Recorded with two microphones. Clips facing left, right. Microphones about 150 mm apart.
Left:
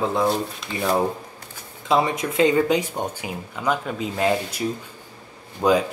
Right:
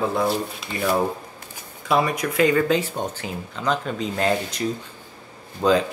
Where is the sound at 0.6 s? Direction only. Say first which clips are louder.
Even; 5° right (ahead or behind).